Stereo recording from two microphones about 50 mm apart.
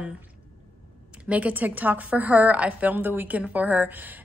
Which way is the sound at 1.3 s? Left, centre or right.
Right.